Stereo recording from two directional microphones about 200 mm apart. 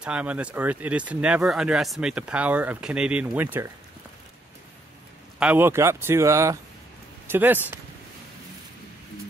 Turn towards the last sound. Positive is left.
turn(degrees=-10)  # may be behind; listen again after turning